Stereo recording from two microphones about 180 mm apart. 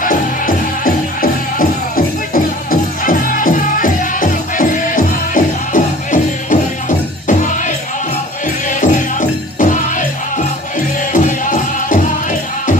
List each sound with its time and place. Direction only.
0.0 s music: 50° left (ahead or behind)